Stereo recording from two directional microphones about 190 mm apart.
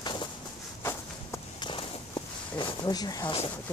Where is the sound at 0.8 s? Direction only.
15° left (ahead or behind).